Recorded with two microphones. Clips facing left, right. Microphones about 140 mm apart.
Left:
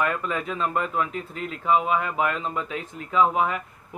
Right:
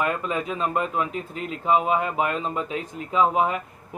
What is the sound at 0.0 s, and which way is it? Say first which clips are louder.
Speech: right 1 dB; 25° right (ahead or behind).